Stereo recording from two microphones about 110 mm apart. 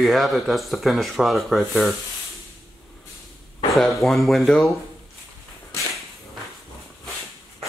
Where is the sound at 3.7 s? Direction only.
Centre (ahead or behind).